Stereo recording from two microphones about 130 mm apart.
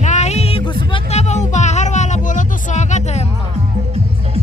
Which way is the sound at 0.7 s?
35° left (ahead or behind).